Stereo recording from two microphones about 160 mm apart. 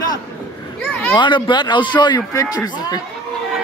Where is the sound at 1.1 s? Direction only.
30° left (ahead or behind).